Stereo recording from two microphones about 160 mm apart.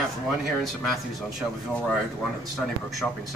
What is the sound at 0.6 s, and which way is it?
Speech, centre (ahead or behind).